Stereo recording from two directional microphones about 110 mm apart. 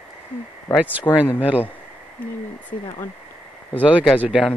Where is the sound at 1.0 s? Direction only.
15° left (ahead or behind).